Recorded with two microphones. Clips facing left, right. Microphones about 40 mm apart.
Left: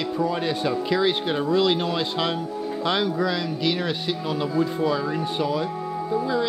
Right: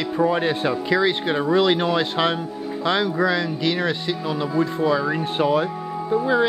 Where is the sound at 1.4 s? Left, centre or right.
Right.